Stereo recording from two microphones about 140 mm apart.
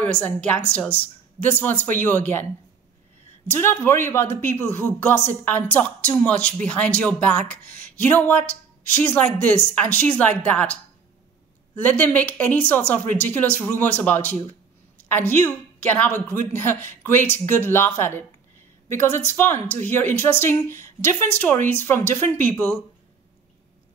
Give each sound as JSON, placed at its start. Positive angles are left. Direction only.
{"t": 0.0, "sound": "speech", "side_deg": 10}
{"t": 3.5, "sound": "speech", "side_deg": 15}